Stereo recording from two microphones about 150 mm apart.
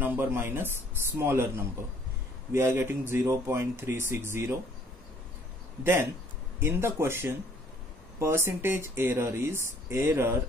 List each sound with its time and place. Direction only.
0.0 s speech: 15° right (ahead or behind)
6.6 s speech: 15° right (ahead or behind)